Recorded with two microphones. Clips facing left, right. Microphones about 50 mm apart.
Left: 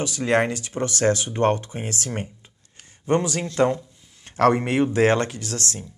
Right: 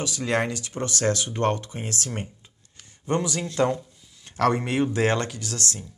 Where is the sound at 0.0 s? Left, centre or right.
Left.